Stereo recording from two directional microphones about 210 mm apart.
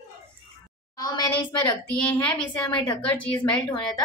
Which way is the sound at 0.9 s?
15° left (ahead or behind).